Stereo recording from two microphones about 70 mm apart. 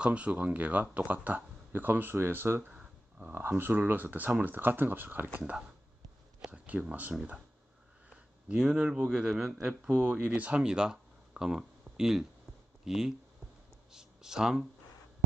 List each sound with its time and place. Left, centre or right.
0.0 s speech: centre; by 2.6 s right
2.6 s a sound: centre
3.4 s speech: right
5.4 s speech: centre
8.1 s speech: centre